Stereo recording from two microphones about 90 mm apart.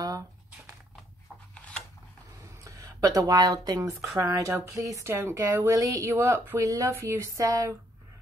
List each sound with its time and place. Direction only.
2.6 s speech: 40° right (ahead or behind)
4.2 s speech: 30° right (ahead or behind)